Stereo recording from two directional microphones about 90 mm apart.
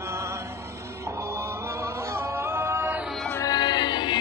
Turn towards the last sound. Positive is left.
turn(degrees=55)  # may be behind; listen again after turning